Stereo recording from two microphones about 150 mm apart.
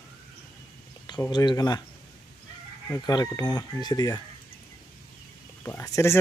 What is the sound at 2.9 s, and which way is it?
Speech, 25° left (ahead or behind).